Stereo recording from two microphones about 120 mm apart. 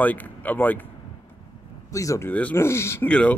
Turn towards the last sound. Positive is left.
turn(degrees=10)  # may be behind; listen again after turning